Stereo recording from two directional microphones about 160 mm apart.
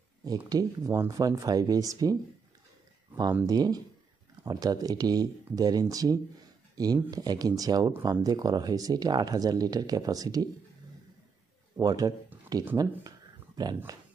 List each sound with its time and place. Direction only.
0.5 s speech: 25° right (ahead or behind)
3.4 s speech: 25° right (ahead or behind)
6.7 s a sound: 25° right (ahead or behind)
7.1 s speech: 25° right (ahead or behind)
11.8 s speech: 25° right (ahead or behind)
13.9 s speech: 25° right (ahead or behind)